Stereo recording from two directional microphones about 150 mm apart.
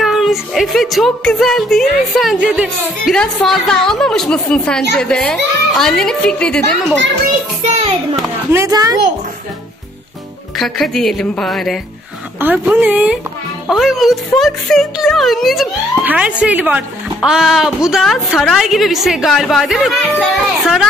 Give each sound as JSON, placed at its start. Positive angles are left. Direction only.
{"t": 0.0, "sound": "a woman's voice", "side_deg": 0}
{"t": 7.6, "sound": "a sound", "side_deg": -40}
{"t": 8.5, "sound": "speech", "side_deg": -20}
{"t": 10.6, "sound": "a woman's voice", "side_deg": 0}
{"t": 12.4, "sound": "a woman's voice", "side_deg": -10}